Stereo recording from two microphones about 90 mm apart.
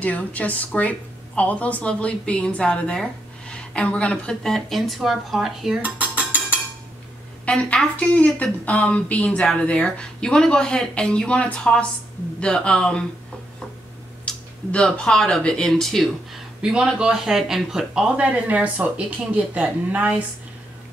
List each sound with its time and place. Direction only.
0.0 s a woman's voice: 15° left (ahead or behind)
4.4 s speech: 5° left (ahead or behind)
5.8 s dishes: 15° right (ahead or behind)
7.4 s a woman's voice: 10° left (ahead or behind)
14.2 s speech: 10° left (ahead or behind)
16.6 s speech: 10° right (ahead or behind)